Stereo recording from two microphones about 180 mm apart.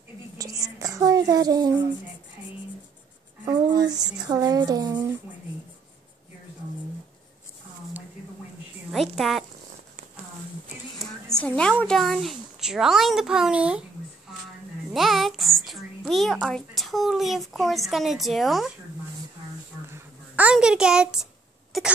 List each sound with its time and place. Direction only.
0.4 s a sound: 20° right (ahead or behind)
3.4 s speech: 20° right (ahead or behind)
8.9 s a woman's voice: centre (ahead or behind)
11.2 s speech: 5° left (ahead or behind)
14.9 s a woman's voice: centre (ahead or behind)
19.9 s a sound: 10° right (ahead or behind)
21.7 s throat clearing: centre (ahead or behind)